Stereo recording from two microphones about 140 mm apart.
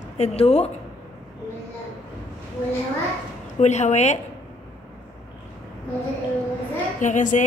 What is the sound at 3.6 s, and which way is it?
Speech, 55° left (ahead or behind).